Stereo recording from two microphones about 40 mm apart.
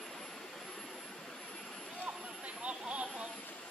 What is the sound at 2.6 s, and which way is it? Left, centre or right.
Vehicle, right.